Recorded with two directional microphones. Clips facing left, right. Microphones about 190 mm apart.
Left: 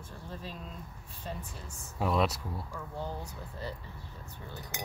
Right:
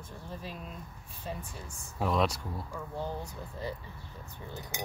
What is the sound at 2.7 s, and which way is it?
Speech, 15° right (ahead or behind).